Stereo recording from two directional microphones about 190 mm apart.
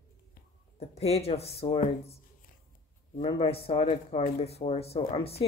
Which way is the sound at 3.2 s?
30° left (ahead or behind).